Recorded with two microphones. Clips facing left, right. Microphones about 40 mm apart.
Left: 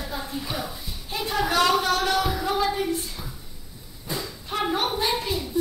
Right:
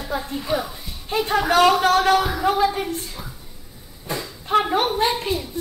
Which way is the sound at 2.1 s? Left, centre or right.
Right.